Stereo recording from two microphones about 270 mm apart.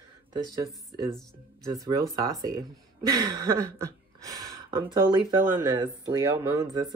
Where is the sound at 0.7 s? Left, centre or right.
Centre.